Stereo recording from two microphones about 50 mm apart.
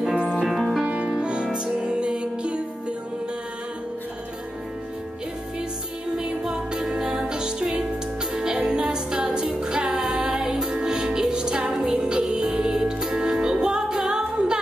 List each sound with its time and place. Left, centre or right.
0.5 s music: centre
0.8 s music: right
6.1 s music: centre